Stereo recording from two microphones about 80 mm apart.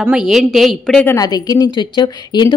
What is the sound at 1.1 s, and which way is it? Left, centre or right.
Speech, left.